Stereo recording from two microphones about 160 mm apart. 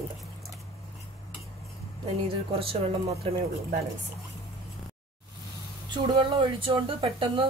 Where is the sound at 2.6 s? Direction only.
35° right (ahead or behind).